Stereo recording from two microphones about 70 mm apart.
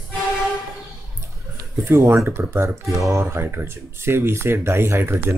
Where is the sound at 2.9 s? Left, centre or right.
Right.